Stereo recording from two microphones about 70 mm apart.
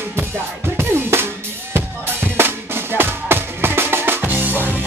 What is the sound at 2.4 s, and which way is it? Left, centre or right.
Drum, right.